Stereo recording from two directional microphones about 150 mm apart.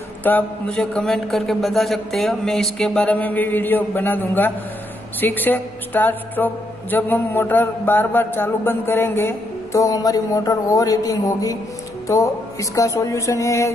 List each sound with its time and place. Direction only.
0.2 s a man's voice: 10° left (ahead or behind)
5.2 s mantra: 10° left (ahead or behind)
12.1 s speech: 20° left (ahead or behind)